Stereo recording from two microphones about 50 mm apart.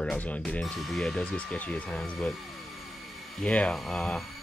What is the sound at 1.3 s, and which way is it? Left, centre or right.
Speech, left.